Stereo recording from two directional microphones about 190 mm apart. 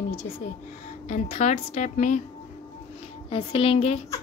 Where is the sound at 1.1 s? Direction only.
40° left (ahead or behind).